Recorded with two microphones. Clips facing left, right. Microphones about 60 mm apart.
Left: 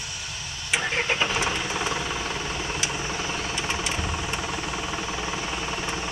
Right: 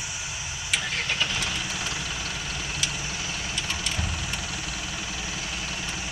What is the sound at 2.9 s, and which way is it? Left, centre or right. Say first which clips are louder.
Vehicle: left 4 dB; left.